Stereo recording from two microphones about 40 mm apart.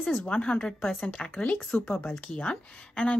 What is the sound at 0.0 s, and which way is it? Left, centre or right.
Speech, left.